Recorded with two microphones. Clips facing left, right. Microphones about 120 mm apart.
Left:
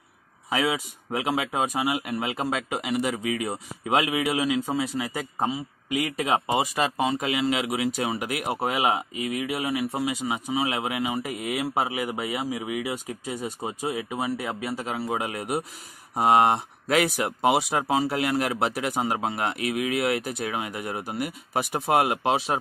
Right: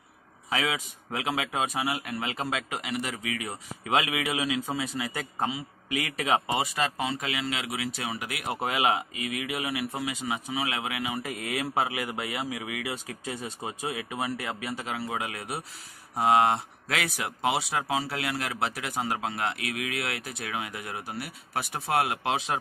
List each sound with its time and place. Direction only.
0.5 s speech: 15° left (ahead or behind)
9.9 s speech: 25° left (ahead or behind); by 15.0 s 5° left (ahead or behind)
15.0 s speech: 25° left (ahead or behind)